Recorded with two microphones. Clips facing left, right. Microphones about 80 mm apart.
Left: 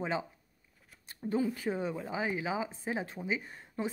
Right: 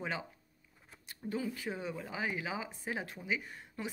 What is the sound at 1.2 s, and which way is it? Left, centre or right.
Speech, left.